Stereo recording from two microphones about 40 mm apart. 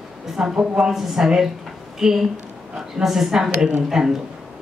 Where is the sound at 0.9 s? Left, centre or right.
Centre.